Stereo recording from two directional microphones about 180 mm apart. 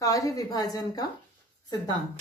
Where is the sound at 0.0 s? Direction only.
20° left (ahead or behind).